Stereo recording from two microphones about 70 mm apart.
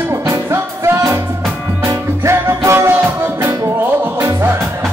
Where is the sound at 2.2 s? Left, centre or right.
Right.